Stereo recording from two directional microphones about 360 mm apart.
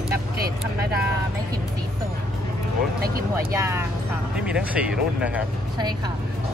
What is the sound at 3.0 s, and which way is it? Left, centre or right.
Speech, right.